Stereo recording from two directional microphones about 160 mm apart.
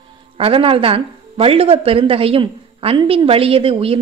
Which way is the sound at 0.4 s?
35° right (ahead or behind).